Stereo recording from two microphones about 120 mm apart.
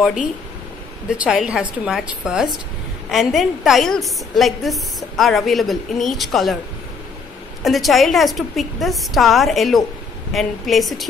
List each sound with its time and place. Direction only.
1.1 s a woman's voice: 10° right (ahead or behind)
7.6 s a woman's voice: centre (ahead or behind)